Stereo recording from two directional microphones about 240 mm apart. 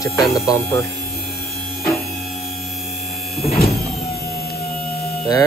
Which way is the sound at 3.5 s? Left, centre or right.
Left.